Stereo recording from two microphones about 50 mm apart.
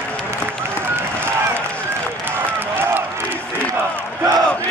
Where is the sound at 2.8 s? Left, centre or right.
Right.